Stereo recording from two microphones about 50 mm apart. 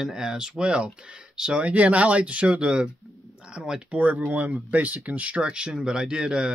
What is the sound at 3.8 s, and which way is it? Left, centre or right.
Speech, right.